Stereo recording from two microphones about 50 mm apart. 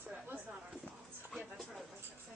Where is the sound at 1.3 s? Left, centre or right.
Centre.